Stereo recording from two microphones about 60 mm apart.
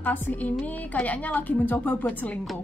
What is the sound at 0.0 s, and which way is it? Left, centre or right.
A woman's voice, left.